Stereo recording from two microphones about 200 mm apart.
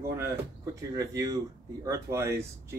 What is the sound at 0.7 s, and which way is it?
Speech, 15° right (ahead or behind).